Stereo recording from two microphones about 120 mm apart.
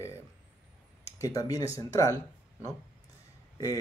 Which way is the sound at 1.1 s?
30° left (ahead or behind).